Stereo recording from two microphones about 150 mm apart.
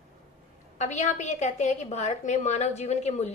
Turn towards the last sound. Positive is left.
turn(degrees=45)  # may be behind; listen again after turning